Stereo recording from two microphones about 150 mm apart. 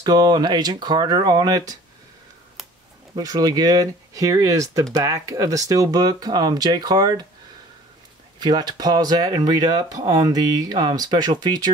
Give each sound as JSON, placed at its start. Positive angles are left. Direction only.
{"t": 0.0, "sound": "speech", "side_deg": -25}
{"t": 3.2, "sound": "speech", "side_deg": -25}
{"t": 8.4, "sound": "speech", "side_deg": -30}